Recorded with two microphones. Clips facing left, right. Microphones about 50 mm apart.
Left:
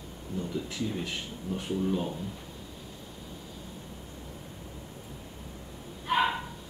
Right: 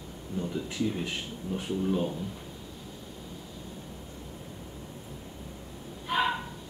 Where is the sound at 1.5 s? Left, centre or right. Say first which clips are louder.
Even; centre.